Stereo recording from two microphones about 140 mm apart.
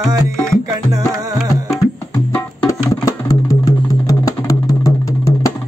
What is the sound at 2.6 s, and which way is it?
Music, 25° left (ahead or behind).